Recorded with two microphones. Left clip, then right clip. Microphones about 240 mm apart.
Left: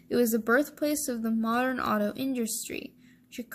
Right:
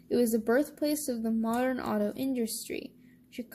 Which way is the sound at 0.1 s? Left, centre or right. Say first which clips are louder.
Left 2 dB; left.